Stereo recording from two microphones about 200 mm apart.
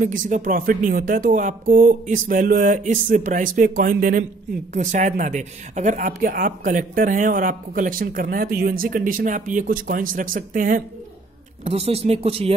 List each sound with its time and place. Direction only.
0.0 s speech: 40° right (ahead or behind)
11.6 s speech: 30° right (ahead or behind)